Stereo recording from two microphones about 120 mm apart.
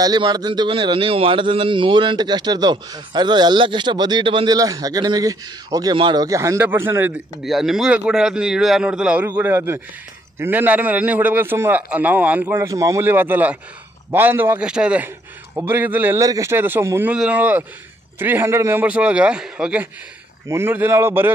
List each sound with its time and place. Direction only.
0.0 s a man's voice: 35° right (ahead or behind)
4.6 s a man's voice: 30° right (ahead or behind)
7.4 s a man's voice: centre (ahead or behind)
9.4 s a man's voice: 20° right (ahead or behind)
12.5 s a man's voice: 25° right (ahead or behind); by 15.0 s 10° right (ahead or behind)
15.5 s a man's voice: 20° right (ahead or behind)
16.2 s a man's voice: 25° right (ahead or behind)